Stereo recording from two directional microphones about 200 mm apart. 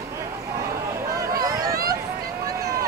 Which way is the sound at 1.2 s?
15° right (ahead or behind).